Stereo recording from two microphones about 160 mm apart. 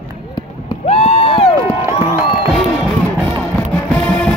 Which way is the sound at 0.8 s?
40° left (ahead or behind).